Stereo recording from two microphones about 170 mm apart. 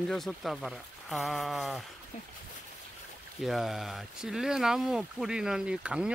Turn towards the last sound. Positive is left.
turn(degrees=-5)  # may be behind; listen again after turning